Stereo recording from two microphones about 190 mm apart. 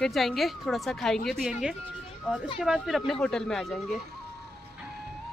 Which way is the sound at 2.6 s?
Centre (ahead or behind).